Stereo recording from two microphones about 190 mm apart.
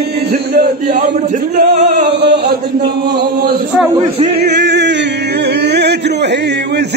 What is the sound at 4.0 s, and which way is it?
Male singing, 30° right (ahead or behind).